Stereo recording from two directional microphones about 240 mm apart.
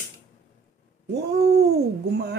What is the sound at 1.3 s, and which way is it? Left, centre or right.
Speech, right.